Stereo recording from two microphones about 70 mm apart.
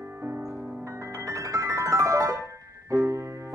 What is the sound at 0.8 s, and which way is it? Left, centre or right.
Piano, right.